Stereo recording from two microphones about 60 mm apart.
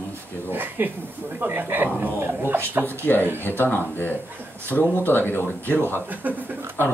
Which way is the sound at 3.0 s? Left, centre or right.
Left.